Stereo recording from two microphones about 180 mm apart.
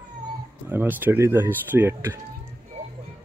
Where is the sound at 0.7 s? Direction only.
10° right (ahead or behind).